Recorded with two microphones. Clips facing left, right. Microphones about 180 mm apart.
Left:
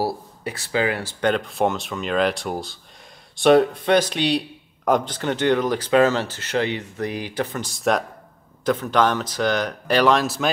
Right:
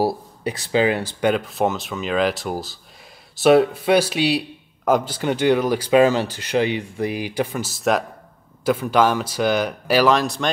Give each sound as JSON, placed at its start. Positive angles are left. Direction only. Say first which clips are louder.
{"t": 0.0, "sound": "speech", "louder": "right 4 dB", "side_deg": -20}
{"t": 1.2, "sound": "speech", "louder": "right 1 dB", "side_deg": -5}